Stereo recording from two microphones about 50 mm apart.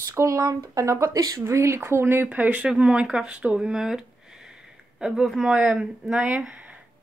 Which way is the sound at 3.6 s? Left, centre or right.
Centre.